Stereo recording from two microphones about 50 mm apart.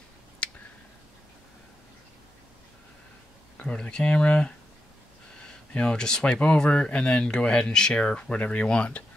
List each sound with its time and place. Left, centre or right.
0.4 s a sound: centre
3.5 s speech: left
5.7 s speech: left
5.9 s speech: centre